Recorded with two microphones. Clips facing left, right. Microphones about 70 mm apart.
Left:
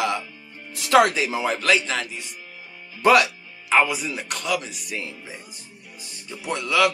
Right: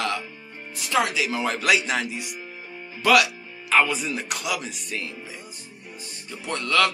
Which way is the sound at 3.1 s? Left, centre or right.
Left.